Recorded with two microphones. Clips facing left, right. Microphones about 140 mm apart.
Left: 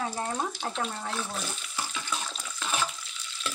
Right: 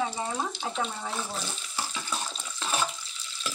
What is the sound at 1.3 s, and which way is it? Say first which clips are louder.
Bathtub: even; 30° right (ahead or behind).